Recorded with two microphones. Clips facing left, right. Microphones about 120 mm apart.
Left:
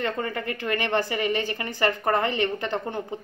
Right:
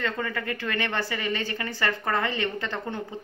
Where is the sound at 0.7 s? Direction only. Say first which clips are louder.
Left 7 dB; 15° left (ahead or behind).